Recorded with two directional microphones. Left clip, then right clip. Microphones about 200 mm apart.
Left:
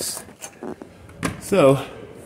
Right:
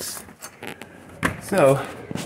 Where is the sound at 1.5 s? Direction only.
40° left (ahead or behind).